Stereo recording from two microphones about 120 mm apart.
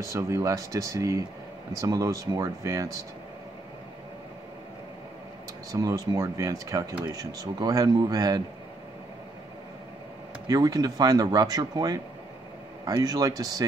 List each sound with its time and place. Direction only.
0.0 s speech: 25° right (ahead or behind)
5.7 s speech: 30° right (ahead or behind)
10.4 s speech: 30° right (ahead or behind)